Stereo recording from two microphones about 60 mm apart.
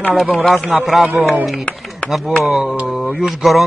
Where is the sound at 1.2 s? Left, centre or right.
Right.